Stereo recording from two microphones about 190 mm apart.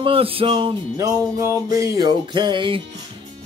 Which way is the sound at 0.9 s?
15° right (ahead or behind).